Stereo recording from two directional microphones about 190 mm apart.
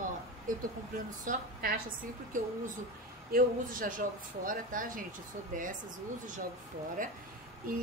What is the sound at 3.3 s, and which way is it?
A woman's voice, 45° right (ahead or behind).